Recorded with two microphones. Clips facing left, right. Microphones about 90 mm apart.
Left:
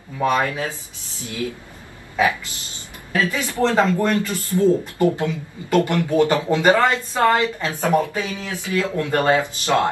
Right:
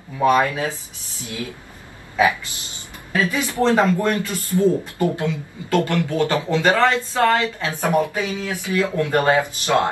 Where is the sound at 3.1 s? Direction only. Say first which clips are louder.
Right 1 dB; 20° right (ahead or behind).